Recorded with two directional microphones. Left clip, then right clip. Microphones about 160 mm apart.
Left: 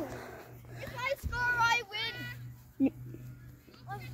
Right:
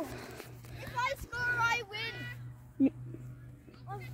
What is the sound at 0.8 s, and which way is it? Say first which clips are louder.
Children playing: right 1 dB; 30° right (ahead or behind).